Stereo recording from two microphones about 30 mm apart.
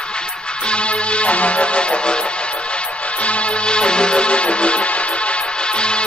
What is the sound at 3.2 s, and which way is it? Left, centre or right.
Music, left.